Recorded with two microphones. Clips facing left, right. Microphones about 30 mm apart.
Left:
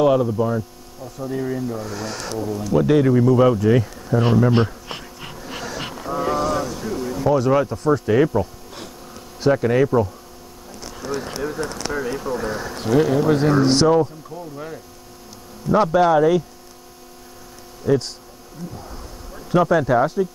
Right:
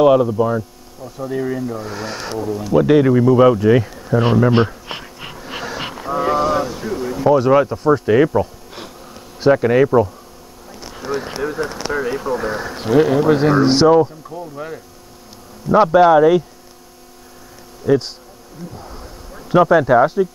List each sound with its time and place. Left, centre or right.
0.0 s speech: centre
17.8 s speech: centre
18.8 s a sound: centre